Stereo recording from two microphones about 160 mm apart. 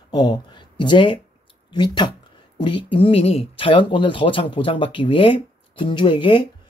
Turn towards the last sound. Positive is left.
turn(degrees=30)  # may be behind; listen again after turning